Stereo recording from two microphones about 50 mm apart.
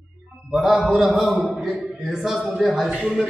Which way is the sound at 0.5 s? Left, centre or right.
Centre.